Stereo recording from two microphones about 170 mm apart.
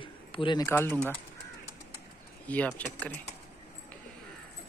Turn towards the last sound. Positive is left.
turn(degrees=10)  # may be behind; listen again after turning